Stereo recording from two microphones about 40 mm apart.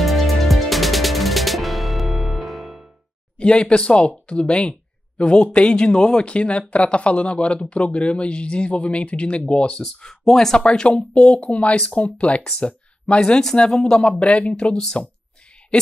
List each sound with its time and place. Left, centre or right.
0.0 s music: centre
3.3 s speech: left
10.5 s speech: left
13.6 s speech: centre
14.0 s speech: left
14.7 s speech: centre